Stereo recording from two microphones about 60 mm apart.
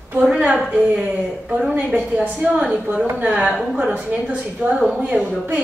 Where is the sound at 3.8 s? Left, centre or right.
Centre.